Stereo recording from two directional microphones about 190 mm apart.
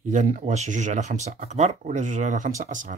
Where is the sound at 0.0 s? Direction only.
40° right (ahead or behind).